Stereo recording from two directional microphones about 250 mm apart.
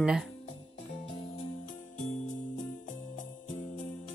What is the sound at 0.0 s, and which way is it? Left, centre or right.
Speech, centre.